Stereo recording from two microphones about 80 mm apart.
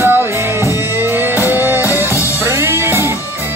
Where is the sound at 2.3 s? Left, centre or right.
Right.